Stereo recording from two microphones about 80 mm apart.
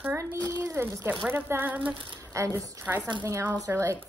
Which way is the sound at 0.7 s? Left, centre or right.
Right.